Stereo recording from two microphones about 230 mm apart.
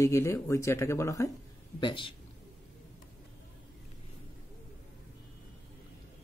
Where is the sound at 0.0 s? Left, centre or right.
Centre.